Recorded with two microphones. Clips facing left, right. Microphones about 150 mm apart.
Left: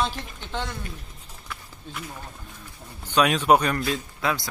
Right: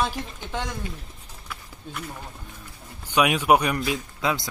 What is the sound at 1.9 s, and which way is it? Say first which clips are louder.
Speech: right 1 dB; 10° right (ahead or behind).